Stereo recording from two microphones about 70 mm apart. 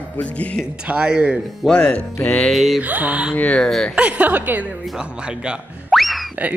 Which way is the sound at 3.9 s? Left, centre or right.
Centre.